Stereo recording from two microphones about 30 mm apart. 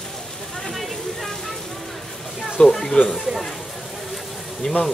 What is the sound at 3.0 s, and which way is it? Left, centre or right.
Speech, left.